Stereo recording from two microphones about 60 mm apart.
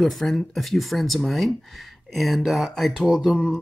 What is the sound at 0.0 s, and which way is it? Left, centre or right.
Speech, centre.